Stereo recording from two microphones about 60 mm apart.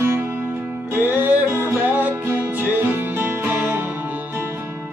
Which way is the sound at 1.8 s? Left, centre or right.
Right.